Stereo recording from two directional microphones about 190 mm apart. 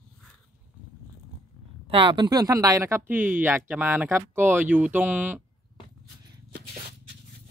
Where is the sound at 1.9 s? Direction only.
25° right (ahead or behind); by 5.4 s 10° right (ahead or behind).